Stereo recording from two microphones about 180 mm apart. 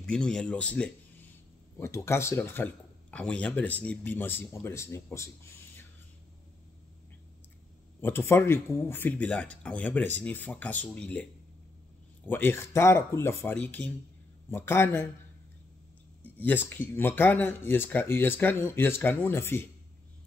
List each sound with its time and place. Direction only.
0.0 s speech: 5° left (ahead or behind)
8.0 s speech: 15° left (ahead or behind)
12.3 s speech: 10° left (ahead or behind)
16.3 s speech: 10° left (ahead or behind)